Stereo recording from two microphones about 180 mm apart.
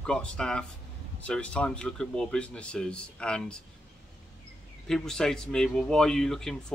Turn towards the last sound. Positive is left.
turn(degrees=0)  # may be behind; listen again after turning